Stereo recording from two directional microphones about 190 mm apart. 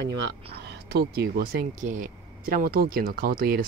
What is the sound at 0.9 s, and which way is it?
Speech, 55° right (ahead or behind).